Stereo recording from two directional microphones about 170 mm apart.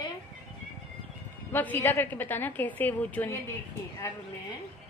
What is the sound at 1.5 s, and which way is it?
A woman's voice, 10° left (ahead or behind).